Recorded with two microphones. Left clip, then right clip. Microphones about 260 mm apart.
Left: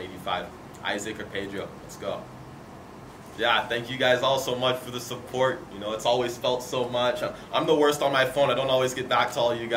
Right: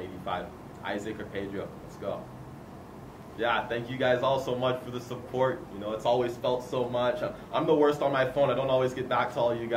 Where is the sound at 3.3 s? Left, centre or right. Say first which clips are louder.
Left 4 dB; centre.